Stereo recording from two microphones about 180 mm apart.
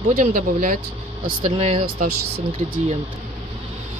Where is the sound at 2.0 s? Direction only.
55° right (ahead or behind).